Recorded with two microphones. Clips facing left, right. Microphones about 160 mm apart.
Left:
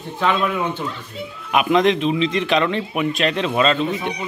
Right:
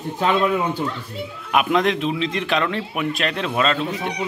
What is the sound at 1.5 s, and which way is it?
A man's voice, centre (ahead or behind).